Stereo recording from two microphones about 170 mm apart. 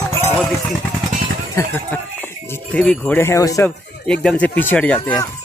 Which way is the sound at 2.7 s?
5° left (ahead or behind).